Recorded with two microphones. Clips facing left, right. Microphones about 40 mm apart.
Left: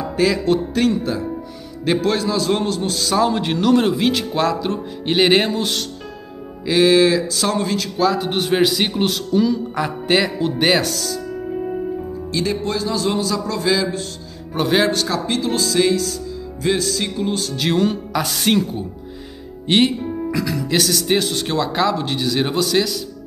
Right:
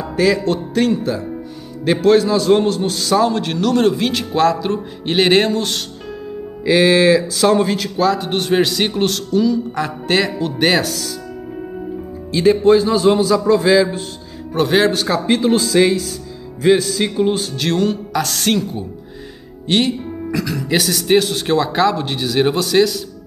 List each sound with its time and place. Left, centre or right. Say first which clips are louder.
0.0 s music: right 2 dB; centre
1.9 s a man's voice: right 6 dB; centre
3.3 s a man's voice: left 1 dB; centre
8.0 s a man's voice: right 1 dB; centre
12.3 s a man's voice: right 11 dB; centre
14.5 s a man's voice: right 3 dB; centre
14.9 s a man's voice: right 4 dB; centre
17.6 s speech: right 1 dB; centre
19.6 s music: left 1 dB; centre
20.3 s a man's voice: right 2 dB; centre